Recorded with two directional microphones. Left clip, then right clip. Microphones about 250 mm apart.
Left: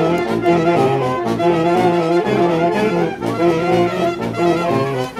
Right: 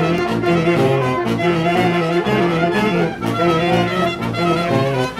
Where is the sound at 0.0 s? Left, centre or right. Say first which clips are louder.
Left 2 dB; right.